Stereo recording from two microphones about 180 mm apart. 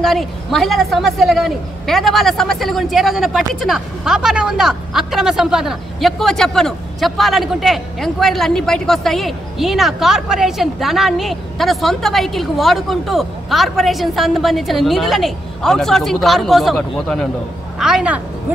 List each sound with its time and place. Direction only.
0.0 s a woman's voice: centre (ahead or behind)